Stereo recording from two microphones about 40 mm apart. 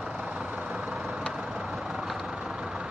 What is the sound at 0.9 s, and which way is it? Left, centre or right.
Vehicle, centre.